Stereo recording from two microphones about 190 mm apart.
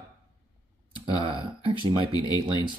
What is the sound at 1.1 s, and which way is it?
Speech, 25° right (ahead or behind).